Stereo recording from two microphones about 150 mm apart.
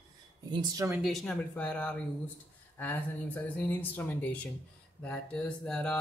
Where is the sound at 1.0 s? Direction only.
5° left (ahead or behind).